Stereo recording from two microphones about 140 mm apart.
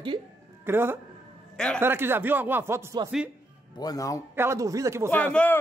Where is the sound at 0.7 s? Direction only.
15° right (ahead or behind).